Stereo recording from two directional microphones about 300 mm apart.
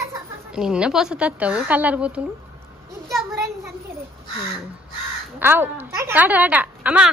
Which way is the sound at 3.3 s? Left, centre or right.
Centre.